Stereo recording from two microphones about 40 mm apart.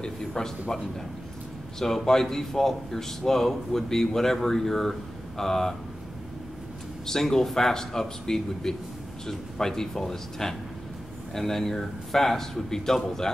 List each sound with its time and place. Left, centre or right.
0.0 s speech: centre
1.8 s speech: centre
7.1 s speech: centre